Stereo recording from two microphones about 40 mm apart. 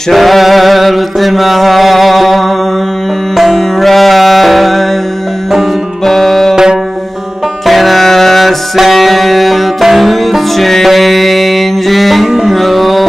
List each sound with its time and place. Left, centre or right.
0.1 s chant: centre
3.3 s music: centre
6.0 s music: centre
6.5 s music: centre
7.6 s music: centre